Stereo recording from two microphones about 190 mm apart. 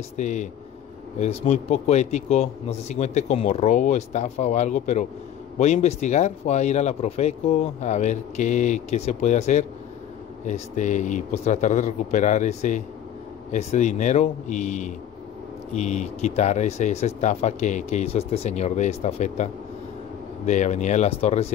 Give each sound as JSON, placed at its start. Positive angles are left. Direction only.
{"t": 0.2, "sound": "speech", "side_deg": 40}